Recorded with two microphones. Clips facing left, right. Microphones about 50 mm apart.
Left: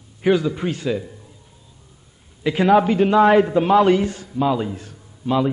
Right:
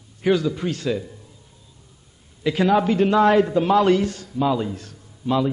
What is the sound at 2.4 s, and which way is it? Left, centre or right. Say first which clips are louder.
A man's voice: left 3 dB; centre.